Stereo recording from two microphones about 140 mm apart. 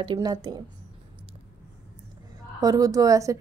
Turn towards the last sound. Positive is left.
turn(degrees=-25)  # may be behind; listen again after turning